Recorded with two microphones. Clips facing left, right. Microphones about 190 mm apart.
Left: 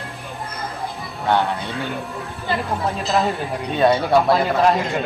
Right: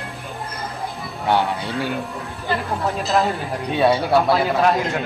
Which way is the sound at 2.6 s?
Centre (ahead or behind).